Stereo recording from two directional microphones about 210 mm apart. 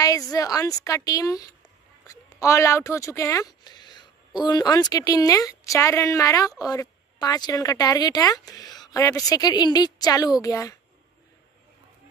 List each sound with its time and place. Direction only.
0.0 s speech: 15° left (ahead or behind)